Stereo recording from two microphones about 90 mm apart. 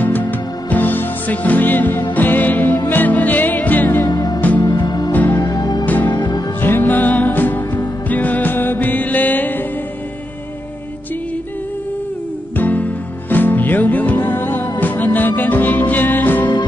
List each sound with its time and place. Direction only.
0.0 s music: 20° left (ahead or behind)
4.1 s music: 50° left (ahead or behind)
4.4 s music: 20° left (ahead or behind)
4.6 s music: 50° left (ahead or behind)
5.1 s music: 20° left (ahead or behind)
5.4 s music: 45° left (ahead or behind)
5.9 s music: 20° left (ahead or behind)
6.1 s music: 50° left (ahead or behind)
6.6 s music: 20° left (ahead or behind)
12.5 s music: 20° left (ahead or behind)